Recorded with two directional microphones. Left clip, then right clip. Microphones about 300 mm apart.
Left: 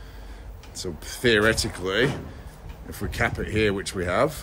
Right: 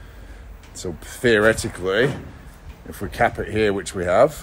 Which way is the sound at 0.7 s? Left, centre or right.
Centre.